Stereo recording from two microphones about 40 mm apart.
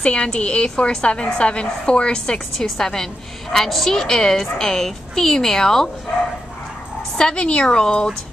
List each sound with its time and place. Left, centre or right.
0.0 s a woman's voice: left
7.2 s a woman's voice: left